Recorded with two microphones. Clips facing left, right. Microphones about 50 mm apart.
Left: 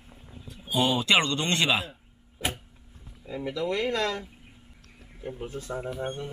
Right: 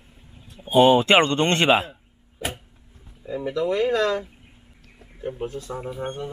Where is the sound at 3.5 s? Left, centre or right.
Right.